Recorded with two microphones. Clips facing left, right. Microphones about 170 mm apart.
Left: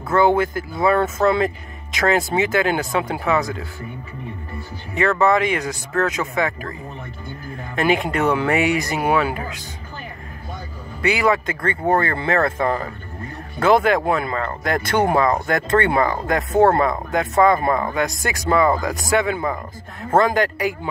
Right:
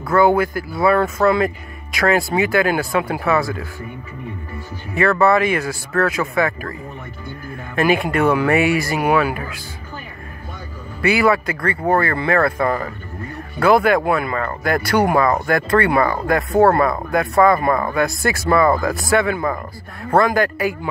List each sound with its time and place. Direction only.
0.1 s speech: 25° left (ahead or behind)
4.9 s speech: 20° left (ahead or behind)
7.7 s speech: 20° left (ahead or behind)
11.0 s speech: 20° left (ahead or behind)